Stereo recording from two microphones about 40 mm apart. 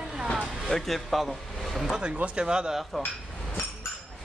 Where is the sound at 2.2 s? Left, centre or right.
Right.